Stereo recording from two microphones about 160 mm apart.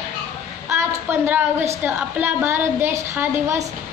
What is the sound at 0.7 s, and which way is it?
A woman's voice, 15° right (ahead or behind).